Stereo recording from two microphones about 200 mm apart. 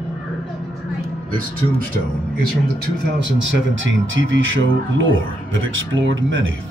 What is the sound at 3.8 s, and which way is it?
Speech, 70° right (ahead or behind).